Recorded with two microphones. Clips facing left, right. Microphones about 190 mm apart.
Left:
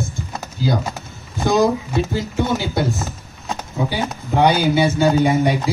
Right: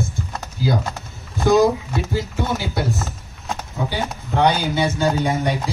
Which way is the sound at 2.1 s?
20° left (ahead or behind).